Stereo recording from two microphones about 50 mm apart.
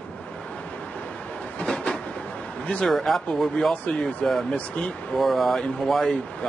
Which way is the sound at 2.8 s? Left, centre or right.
Centre.